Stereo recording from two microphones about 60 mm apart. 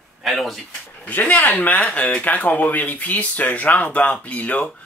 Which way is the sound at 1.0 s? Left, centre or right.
Left.